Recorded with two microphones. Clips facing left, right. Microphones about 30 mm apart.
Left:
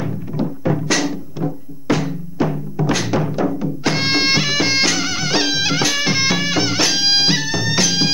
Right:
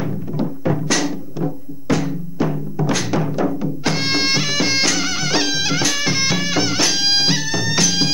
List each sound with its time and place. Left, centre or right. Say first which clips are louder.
0.0 s music: even; centre